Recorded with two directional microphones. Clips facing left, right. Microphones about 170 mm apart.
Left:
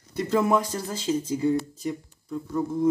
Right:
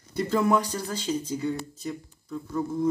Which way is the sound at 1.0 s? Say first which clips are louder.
Left 5 dB; 25° left (ahead or behind).